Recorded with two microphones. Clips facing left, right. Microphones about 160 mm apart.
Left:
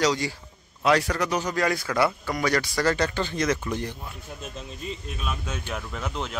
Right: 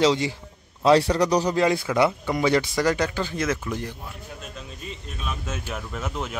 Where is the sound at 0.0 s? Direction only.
25° right (ahead or behind).